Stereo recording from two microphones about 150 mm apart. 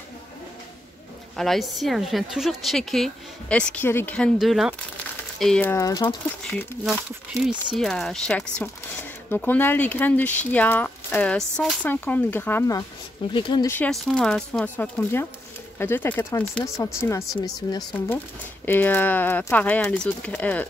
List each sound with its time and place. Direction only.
1.3 s a woman's voice: centre (ahead or behind)
4.4 s a woman's voice: centre (ahead or behind)
5.7 s speech: 25° left (ahead or behind)
6.8 s a woman's voice: 5° right (ahead or behind); by 12.8 s 20° left (ahead or behind)
13.3 s speech: 30° left (ahead or behind)
13.7 s speech: 10° left (ahead or behind)
18.7 s speech: 15° left (ahead or behind)